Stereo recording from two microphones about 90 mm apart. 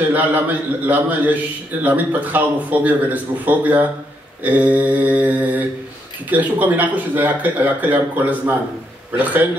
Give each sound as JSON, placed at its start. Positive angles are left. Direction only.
{"t": 0.1, "sound": "a man's voice", "side_deg": -20}
{"t": 4.4, "sound": "mantra", "side_deg": -15}
{"t": 6.3, "sound": "a man's voice", "side_deg": -20}